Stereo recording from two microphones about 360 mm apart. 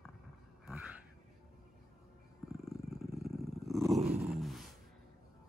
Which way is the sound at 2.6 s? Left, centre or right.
Centre.